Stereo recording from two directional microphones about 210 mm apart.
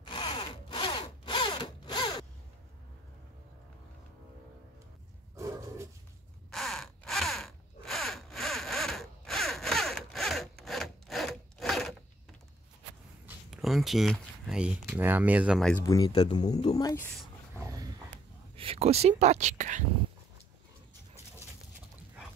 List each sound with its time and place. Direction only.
0.0 s sawing: 20° left (ahead or behind)
5.3 s wild animals: 15° right (ahead or behind)
6.5 s a sound: centre (ahead or behind)
13.5 s speech: centre (ahead or behind)
15.8 s speech: 15° left (ahead or behind)
17.6 s dog: 15° right (ahead or behind)
18.6 s speech: 30° right (ahead or behind)